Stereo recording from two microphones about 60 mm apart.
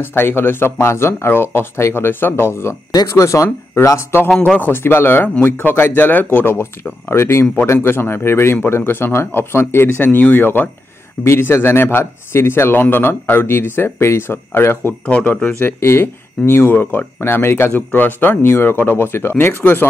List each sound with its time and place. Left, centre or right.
0.0 s speech: left
3.1 s speech: left
4.1 s speech: left
11.2 s a man's voice: left
15.0 s speech: left
15.6 s speech: left